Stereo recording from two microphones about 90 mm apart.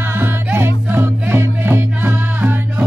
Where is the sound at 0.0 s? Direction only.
25° right (ahead or behind).